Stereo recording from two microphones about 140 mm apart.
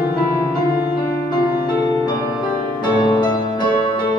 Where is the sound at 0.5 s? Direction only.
30° left (ahead or behind).